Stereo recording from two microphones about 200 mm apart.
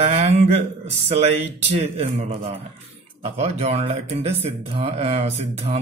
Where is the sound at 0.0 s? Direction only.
30° right (ahead or behind).